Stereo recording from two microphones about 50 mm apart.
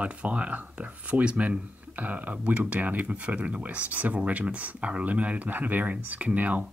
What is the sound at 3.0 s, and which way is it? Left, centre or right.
Speech, right.